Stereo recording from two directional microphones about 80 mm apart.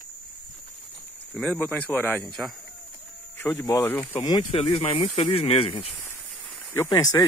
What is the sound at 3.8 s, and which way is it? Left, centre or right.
Speech, left.